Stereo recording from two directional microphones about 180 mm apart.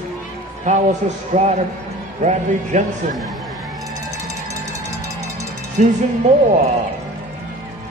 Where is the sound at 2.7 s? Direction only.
45° right (ahead or behind).